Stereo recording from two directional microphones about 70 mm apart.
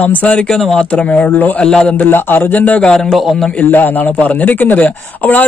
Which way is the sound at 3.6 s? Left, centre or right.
Left.